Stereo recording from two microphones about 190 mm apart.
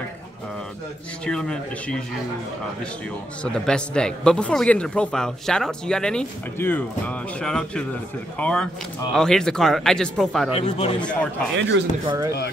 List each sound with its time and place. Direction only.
1.2 s a man's voice: 5° left (ahead or behind)
3.4 s a man's voice: 5° left (ahead or behind)
10.5 s speech: 30° left (ahead or behind)
11.0 s a man's voice: 5° left (ahead or behind)
11.5 s a man's voice: 70° right (ahead or behind)
12.1 s speech: 15° right (ahead or behind)